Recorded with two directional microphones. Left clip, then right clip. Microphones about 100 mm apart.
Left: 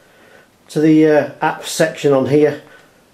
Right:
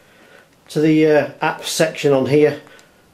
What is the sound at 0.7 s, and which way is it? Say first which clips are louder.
Speech: left 2 dB; 15° right (ahead or behind).